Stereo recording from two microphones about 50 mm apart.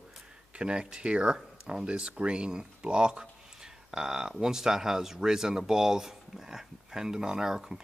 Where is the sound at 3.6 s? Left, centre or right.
Centre.